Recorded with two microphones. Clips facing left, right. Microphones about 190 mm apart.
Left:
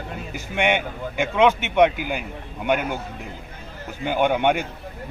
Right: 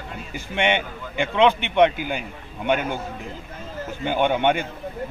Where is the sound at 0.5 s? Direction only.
10° left (ahead or behind).